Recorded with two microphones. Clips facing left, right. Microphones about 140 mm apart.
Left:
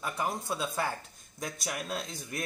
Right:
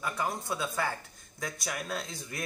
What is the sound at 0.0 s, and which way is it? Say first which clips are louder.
Speech: even; 20° left (ahead or behind).